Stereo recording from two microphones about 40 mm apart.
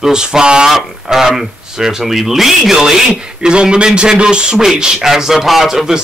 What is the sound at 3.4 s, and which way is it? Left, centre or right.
A man's voice, right.